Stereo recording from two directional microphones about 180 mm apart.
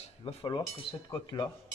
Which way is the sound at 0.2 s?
30° left (ahead or behind).